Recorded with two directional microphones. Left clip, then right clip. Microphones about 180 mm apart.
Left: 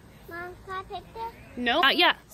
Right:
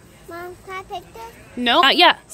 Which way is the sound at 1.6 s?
25° right (ahead or behind).